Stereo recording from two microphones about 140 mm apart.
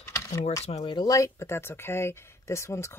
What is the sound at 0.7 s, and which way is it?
Speech, 40° left (ahead or behind).